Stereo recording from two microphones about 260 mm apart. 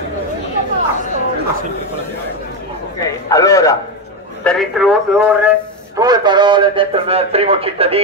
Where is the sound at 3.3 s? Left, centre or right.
Centre.